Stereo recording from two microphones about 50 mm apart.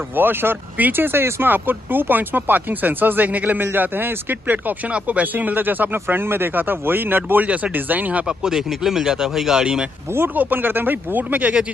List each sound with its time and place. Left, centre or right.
0.1 s speech: right
4.8 s speech: right
7.4 s speech: right
7.7 s speech: right
8.3 s speech: centre
10.1 s speech: right